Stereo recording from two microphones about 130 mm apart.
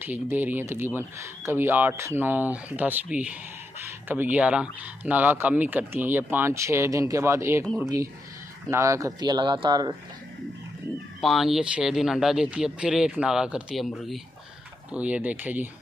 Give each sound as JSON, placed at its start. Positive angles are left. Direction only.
{"t": 0.0, "sound": "speech", "side_deg": -15}
{"t": 11.1, "sound": "speech", "side_deg": 0}
{"t": 14.9, "sound": "speech", "side_deg": -10}